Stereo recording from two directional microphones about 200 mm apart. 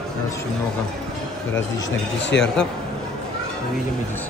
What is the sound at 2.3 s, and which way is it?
Speech, 65° left (ahead or behind).